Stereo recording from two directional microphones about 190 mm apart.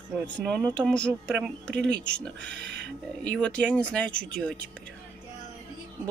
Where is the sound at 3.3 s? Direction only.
5° left (ahead or behind).